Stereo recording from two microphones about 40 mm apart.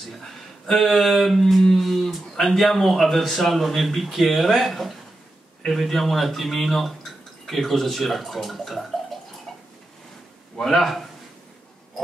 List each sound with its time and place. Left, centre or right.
0.2 s speech: centre
10.6 s speech: centre